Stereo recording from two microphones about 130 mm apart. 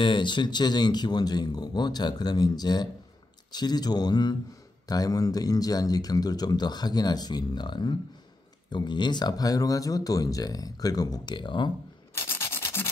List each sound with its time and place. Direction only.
0.0 s speech: 40° left (ahead or behind)
12.2 s rub: 20° left (ahead or behind)